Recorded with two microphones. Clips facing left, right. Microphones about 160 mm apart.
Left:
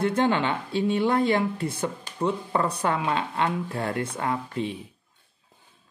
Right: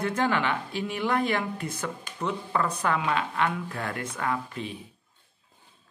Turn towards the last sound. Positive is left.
turn(degrees=25)  # may be behind; listen again after turning